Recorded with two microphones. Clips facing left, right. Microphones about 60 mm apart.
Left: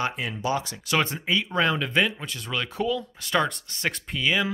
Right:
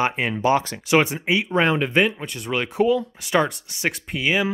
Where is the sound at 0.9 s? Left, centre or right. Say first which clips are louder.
Right 6 dB; centre.